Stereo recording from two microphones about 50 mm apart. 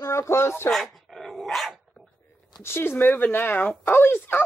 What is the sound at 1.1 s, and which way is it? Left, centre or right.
Dog, centre.